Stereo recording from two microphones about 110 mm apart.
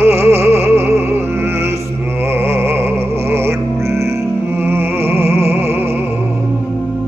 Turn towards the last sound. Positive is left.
turn(degrees=-20)  # may be behind; listen again after turning